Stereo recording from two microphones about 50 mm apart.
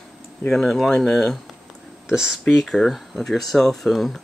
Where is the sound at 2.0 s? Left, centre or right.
Centre.